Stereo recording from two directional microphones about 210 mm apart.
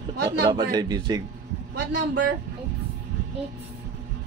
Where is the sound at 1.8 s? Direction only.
55° right (ahead or behind).